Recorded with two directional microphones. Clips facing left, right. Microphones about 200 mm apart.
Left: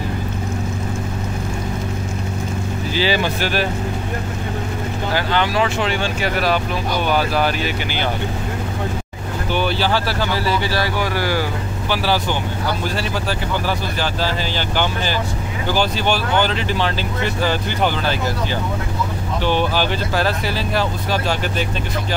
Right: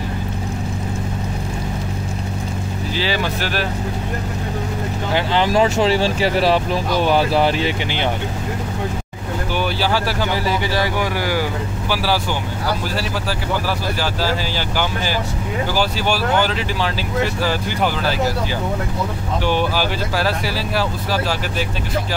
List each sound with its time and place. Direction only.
2.9 s speech: centre (ahead or behind)
5.1 s speech: 30° right (ahead or behind)
9.6 s speech: 10° right (ahead or behind)
13.7 s speech: 5° right (ahead or behind)
15.7 s speech: 5° right (ahead or behind)
19.4 s speech: 10° right (ahead or behind)